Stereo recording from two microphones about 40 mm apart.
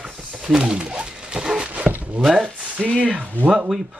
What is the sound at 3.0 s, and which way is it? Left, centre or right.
Speech, right.